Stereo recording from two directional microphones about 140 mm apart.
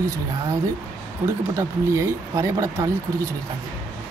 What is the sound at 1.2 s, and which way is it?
Speech, 20° right (ahead or behind).